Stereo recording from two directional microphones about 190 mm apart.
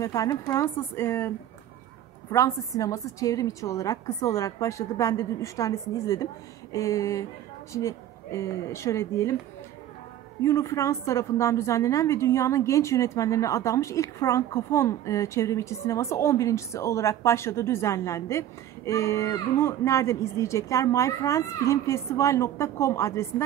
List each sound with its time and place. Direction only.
0.0 s a woman's voice: 15° left (ahead or behind)
2.3 s a woman's voice: 15° left (ahead or behind)
10.4 s a woman's voice: 15° left (ahead or behind)